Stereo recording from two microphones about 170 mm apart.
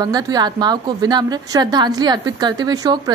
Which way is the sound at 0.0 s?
25° right (ahead or behind).